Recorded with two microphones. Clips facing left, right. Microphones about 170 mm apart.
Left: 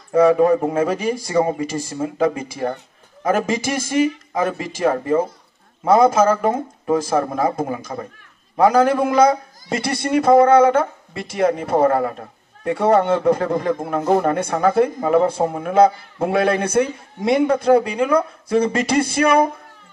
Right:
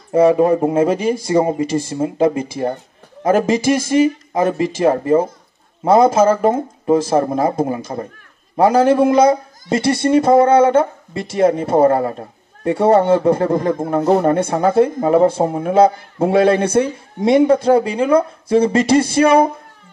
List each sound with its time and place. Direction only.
0.1 s speech: 25° right (ahead or behind)